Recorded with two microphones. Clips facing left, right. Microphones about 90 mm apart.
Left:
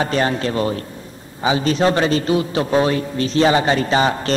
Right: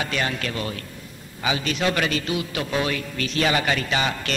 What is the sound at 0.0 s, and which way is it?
A man's voice, 35° left (ahead or behind).